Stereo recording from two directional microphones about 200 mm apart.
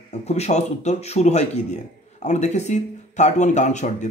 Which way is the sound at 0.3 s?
35° left (ahead or behind).